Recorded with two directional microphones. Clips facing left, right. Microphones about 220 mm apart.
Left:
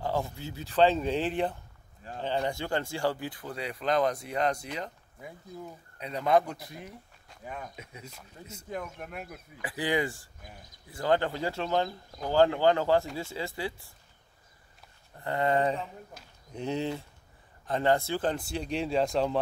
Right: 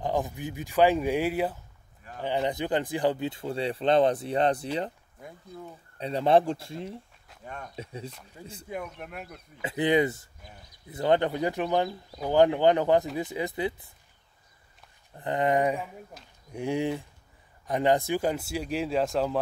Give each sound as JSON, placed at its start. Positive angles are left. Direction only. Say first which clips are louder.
{"t": 0.0, "sound": "speech", "louder": "right 3 dB", "side_deg": -15}
{"t": 2.2, "sound": "speech", "louder": "right 3 dB", "side_deg": -20}
{"t": 5.2, "sound": "speech", "louder": "even", "side_deg": 5}
{"t": 5.9, "sound": "speech", "louder": "right 3 dB", "side_deg": -30}
{"t": 7.2, "sound": "speech", "louder": "left 2 dB", "side_deg": 5}
{"t": 7.7, "sound": "speech", "louder": "right 8 dB", "side_deg": -30}
{"t": 8.4, "sound": "speech", "louder": "right 3 dB", "side_deg": -10}
{"t": 8.8, "sound": "speech", "louder": "right 1 dB", "side_deg": 5}
{"t": 9.6, "sound": "speech", "louder": "right 6 dB", "side_deg": -20}
{"t": 15.1, "sound": "speech", "louder": "right 2 dB", "side_deg": -20}
{"t": 16.2, "sound": "speech", "louder": "right 1 dB", "side_deg": 0}
{"t": 16.5, "sound": "speech", "louder": "right 3 dB", "side_deg": -15}